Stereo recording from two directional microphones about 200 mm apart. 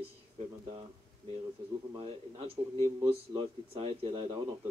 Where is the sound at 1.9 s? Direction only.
30° right (ahead or behind).